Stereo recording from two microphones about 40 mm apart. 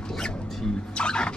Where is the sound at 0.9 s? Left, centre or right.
Left.